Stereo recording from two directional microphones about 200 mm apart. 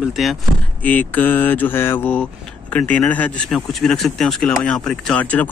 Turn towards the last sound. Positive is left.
turn(degrees=5)  # may be behind; listen again after turning